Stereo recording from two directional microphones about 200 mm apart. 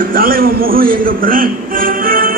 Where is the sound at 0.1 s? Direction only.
45° right (ahead or behind).